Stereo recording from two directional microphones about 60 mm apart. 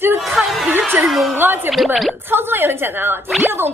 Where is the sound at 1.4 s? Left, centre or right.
Right.